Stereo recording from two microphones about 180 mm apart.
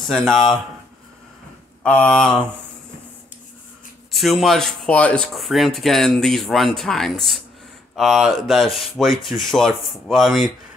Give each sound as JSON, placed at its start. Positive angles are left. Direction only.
{"t": 0.0, "sound": "speech", "side_deg": 0}
{"t": 1.8, "sound": "speech", "side_deg": 10}
{"t": 4.1, "sound": "speech", "side_deg": 0}